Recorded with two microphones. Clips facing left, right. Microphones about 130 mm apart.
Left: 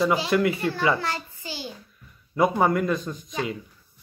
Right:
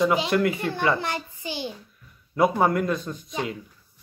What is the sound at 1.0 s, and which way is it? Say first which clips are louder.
Speech: even; 20° right (ahead or behind).